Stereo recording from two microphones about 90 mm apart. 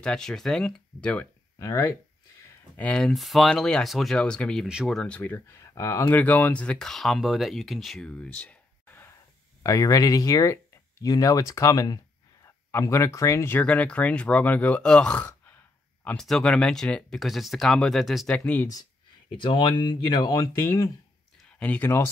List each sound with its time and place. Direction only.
0.0 s speech: 10° left (ahead or behind)
1.6 s speech: 35° left (ahead or behind)
2.8 s speech: 15° left (ahead or behind)
3.1 s speech: centre (ahead or behind); by 5.4 s 15° left (ahead or behind)
5.5 s speech: 35° left (ahead or behind)
6.1 s speech: 20° left (ahead or behind)
9.6 s speech: 40° left (ahead or behind)
13.6 s speech: 15° left (ahead or behind)
16.2 s speech: 5° left (ahead or behind)
19.2 s speech: 65° left (ahead or behind); by 20.9 s 35° left (ahead or behind)
21.5 s speech: 15° left (ahead or behind)